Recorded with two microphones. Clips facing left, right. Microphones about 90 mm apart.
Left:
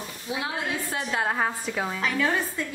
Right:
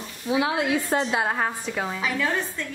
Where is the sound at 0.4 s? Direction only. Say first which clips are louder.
Right 7 dB; 90° right.